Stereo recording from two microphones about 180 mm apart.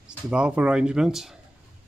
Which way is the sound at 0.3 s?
5° right (ahead or behind).